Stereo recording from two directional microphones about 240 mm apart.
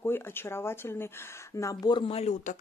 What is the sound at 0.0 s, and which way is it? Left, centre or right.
Speech, centre.